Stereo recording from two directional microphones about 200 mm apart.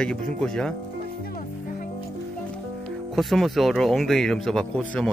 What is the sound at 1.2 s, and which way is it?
Music, 45° left (ahead or behind).